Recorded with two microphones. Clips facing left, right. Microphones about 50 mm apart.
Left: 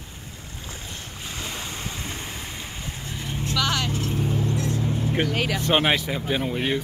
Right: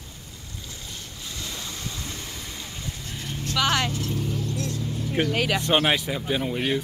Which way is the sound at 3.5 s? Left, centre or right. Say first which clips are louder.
Right 2 dB; right.